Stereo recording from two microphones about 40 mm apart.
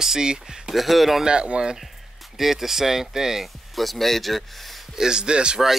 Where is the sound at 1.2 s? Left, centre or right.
Right.